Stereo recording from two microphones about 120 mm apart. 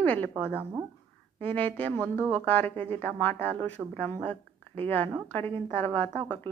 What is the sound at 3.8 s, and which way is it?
Speech, 15° right (ahead or behind).